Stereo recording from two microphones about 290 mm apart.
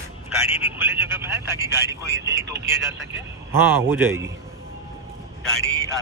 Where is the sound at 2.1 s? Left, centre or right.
Right.